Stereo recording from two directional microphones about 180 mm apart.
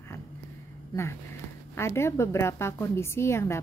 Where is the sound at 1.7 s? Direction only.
15° left (ahead or behind).